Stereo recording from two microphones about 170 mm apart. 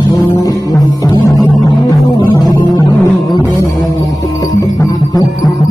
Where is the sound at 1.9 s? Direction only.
20° left (ahead or behind).